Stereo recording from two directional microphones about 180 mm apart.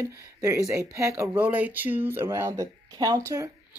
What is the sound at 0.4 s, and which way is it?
Speech, 15° right (ahead or behind).